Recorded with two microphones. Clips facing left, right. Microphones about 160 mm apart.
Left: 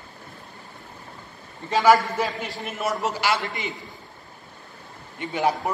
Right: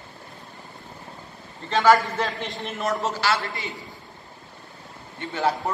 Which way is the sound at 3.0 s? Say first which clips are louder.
Even; 15° left (ahead or behind).